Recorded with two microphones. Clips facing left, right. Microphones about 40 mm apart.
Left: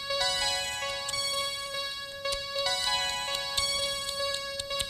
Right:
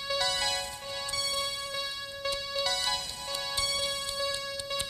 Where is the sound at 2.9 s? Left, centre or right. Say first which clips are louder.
Left 4 dB; left.